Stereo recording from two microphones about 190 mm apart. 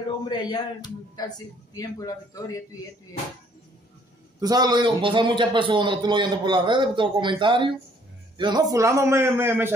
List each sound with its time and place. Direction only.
0.0 s a sound: 25° left (ahead or behind)
1.7 s a man's voice: 20° left (ahead or behind)
4.4 s a man's voice: 20° right (ahead or behind)